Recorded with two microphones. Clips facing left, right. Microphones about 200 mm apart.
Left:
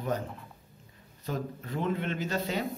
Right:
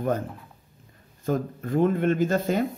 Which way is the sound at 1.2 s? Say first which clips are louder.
Right 8 dB; 50° right (ahead or behind).